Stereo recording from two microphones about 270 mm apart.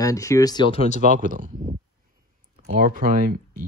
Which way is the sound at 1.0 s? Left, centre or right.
Right.